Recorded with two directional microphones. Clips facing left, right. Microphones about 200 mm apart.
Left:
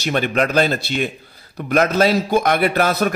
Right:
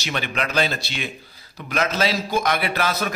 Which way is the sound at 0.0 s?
45° left (ahead or behind).